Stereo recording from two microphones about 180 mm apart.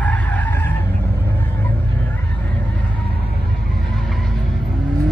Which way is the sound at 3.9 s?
Centre (ahead or behind).